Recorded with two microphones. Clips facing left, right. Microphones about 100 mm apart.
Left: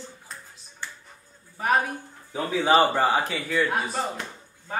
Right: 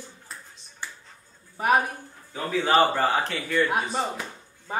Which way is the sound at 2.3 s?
10° left (ahead or behind).